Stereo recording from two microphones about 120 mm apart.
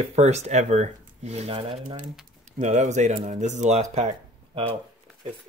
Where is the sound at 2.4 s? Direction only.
80° right.